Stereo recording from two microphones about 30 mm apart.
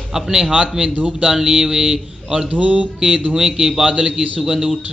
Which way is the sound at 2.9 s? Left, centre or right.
Right.